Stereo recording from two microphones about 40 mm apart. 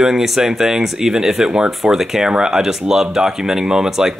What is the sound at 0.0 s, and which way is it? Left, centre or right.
Speech, centre.